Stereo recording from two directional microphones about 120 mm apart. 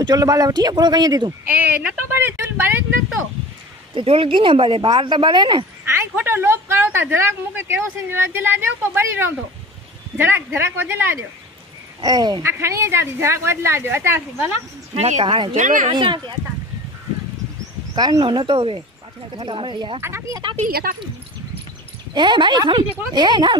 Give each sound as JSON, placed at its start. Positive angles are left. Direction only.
{"t": 0.0, "sound": "a man's voice", "side_deg": -30}
{"t": 1.4, "sound": "a woman's voice", "side_deg": -15}
{"t": 3.9, "sound": "speech", "side_deg": -50}
{"t": 5.9, "sound": "a woman's voice", "side_deg": -20}
{"t": 12.0, "sound": "a man's voice", "side_deg": -35}
{"t": 12.4, "sound": "a woman's voice", "side_deg": -20}
{"t": 15.0, "sound": "speech", "side_deg": -70}
{"t": 15.2, "sound": "speech", "side_deg": -45}
{"t": 15.5, "sound": "speech", "side_deg": -90}
{"t": 15.9, "sound": "a man's voice", "side_deg": -40}
{"t": 17.9, "sound": "a man's voice", "side_deg": -35}
{"t": 20.0, "sound": "a woman's voice", "side_deg": -20}
{"t": 22.1, "sound": "a man's voice", "side_deg": -40}